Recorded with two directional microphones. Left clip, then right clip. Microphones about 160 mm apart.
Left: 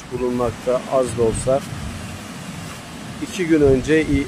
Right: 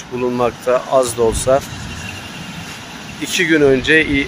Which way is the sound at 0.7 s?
15° right (ahead or behind).